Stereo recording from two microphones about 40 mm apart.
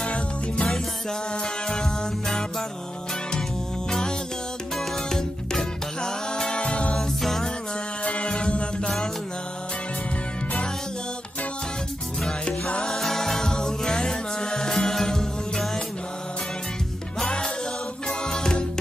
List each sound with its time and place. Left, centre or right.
0.0 s music: left
1.7 s music: centre
5.1 s music: centre; by 7.0 s left
7.2 s music: centre
8.0 s music: left
12.3 s music: left
12.8 s music: centre
18.0 s music: centre